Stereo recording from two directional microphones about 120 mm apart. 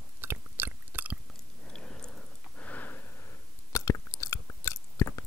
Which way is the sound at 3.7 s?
25° left (ahead or behind).